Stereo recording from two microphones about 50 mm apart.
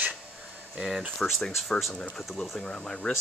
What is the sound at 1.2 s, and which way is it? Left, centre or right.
Speech, centre.